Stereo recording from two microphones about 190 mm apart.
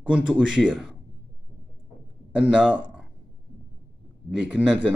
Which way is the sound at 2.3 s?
5° right (ahead or behind).